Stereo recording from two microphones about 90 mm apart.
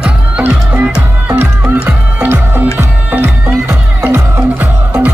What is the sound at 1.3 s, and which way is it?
Music, 25° right (ahead or behind).